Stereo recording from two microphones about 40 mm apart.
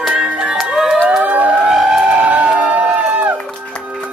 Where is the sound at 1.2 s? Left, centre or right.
Right.